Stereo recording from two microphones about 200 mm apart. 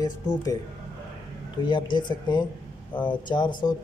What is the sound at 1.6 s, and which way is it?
Speech, 25° left (ahead or behind).